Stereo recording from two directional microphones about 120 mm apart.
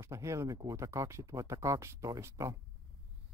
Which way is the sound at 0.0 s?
25° right (ahead or behind).